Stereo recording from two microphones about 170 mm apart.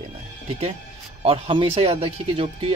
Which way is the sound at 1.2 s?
35° right (ahead or behind).